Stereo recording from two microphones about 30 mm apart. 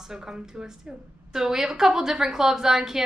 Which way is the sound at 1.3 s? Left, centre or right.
Centre.